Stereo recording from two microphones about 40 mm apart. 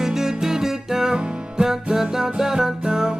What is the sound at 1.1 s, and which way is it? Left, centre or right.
Music, right.